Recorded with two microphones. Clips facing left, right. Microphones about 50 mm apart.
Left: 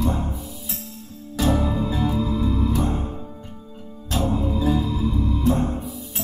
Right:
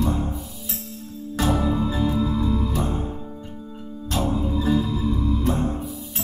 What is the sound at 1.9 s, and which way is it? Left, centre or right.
Music, left.